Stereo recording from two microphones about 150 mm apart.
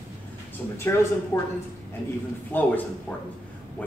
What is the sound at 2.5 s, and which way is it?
Speech, 15° left (ahead or behind).